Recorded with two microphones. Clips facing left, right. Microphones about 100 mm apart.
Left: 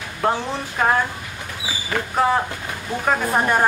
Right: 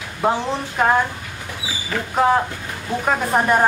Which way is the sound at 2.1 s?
5° right (ahead or behind).